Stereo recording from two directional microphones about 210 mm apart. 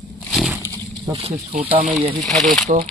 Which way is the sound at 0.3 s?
Centre (ahead or behind).